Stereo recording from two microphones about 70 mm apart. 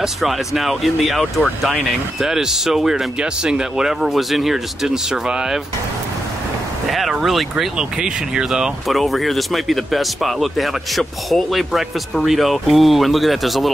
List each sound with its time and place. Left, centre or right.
0.0 s speech: centre
6.9 s speech: centre